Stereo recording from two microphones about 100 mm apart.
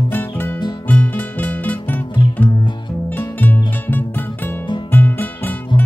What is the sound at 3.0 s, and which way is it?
Music, 15° left (ahead or behind).